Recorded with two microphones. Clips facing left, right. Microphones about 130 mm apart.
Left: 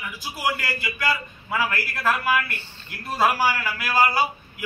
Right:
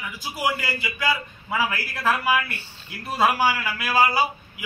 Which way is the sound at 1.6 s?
Centre (ahead or behind).